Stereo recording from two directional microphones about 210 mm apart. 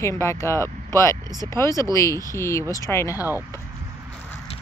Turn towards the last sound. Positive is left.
turn(degrees=15)  # may be behind; listen again after turning